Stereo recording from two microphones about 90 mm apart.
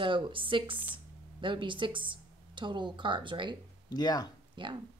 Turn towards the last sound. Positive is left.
turn(degrees=-65)  # may be behind; listen again after turning